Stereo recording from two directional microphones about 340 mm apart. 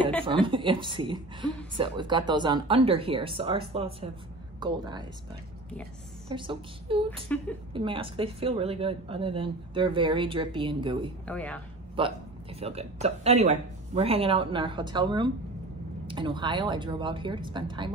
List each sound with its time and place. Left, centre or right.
0.5 s a woman's voice: centre
6.2 s a woman's voice: centre
7.3 s speech: centre
7.7 s a woman's voice: centre
11.2 s speech: centre
12.0 s a woman's voice: centre